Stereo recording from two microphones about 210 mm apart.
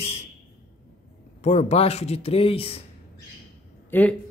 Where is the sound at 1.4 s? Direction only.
30° left (ahead or behind).